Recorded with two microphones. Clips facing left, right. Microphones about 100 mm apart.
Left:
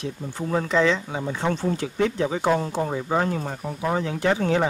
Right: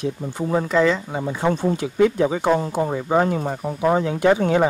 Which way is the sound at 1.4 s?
15° right (ahead or behind).